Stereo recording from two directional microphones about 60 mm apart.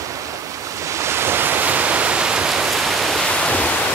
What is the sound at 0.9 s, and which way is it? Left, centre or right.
Waves, right.